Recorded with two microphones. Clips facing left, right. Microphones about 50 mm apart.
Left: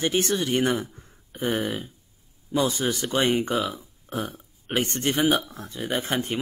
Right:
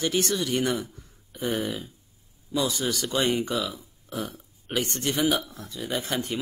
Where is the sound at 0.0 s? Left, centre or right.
Left.